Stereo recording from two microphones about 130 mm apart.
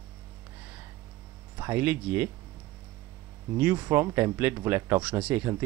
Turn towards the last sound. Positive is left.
turn(degrees=-15)  # may be behind; listen again after turning